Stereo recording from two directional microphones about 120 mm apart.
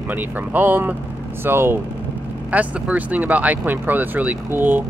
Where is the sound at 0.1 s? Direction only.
15° right (ahead or behind).